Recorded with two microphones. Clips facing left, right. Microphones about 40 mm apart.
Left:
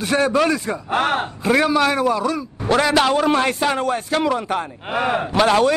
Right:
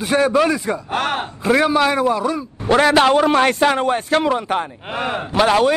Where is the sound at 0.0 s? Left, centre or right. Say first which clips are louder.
Right 2 dB; right.